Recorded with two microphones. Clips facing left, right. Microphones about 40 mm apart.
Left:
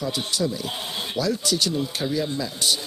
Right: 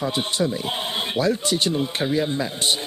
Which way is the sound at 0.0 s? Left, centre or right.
Right.